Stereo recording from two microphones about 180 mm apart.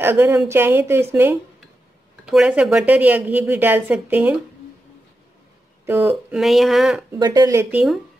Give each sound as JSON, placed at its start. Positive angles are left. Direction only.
{"t": 0.0, "sound": "a woman's voice", "side_deg": -10}
{"t": 5.9, "sound": "speech", "side_deg": -10}
{"t": 7.1, "sound": "speech", "side_deg": -20}
{"t": 7.7, "sound": "speech", "side_deg": 0}